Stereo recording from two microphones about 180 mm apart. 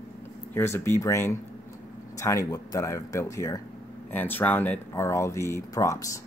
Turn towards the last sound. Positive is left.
turn(degrees=15)  # may be behind; listen again after turning